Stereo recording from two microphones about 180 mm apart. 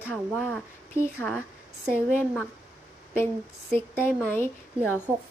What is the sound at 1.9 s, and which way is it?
Speech, 10° left (ahead or behind).